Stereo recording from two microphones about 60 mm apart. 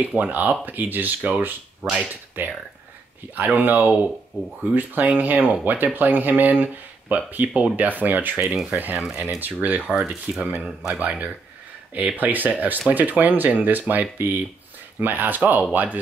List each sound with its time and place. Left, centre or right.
0.0 s speech: right
3.3 s speech: right